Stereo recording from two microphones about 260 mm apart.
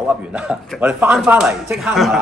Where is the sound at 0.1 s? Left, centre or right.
Centre.